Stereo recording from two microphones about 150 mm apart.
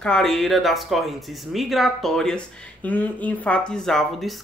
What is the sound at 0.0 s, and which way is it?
Speech, 5° left (ahead or behind).